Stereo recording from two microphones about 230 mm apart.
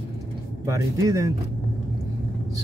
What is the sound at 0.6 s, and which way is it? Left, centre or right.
Speech, centre.